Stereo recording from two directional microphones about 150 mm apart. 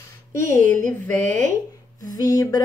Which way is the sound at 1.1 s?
55° right (ahead or behind).